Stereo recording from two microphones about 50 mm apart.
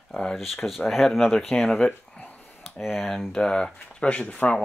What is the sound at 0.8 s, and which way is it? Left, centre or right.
Speech, centre.